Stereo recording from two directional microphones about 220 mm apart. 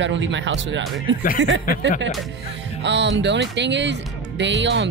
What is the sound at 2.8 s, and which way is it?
Speech, 55° right (ahead or behind).